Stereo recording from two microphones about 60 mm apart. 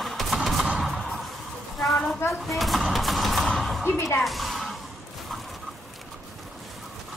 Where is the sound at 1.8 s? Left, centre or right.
Centre.